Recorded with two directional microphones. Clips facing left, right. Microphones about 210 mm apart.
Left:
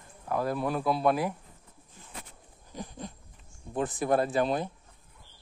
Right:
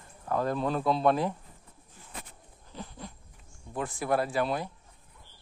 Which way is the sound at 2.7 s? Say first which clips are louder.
Left 3 dB; 15° left (ahead or behind).